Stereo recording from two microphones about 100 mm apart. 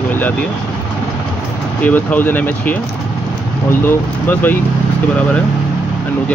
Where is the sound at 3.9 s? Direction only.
20° left (ahead or behind).